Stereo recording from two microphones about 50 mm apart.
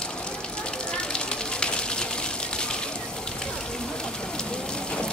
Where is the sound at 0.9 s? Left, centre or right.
Centre.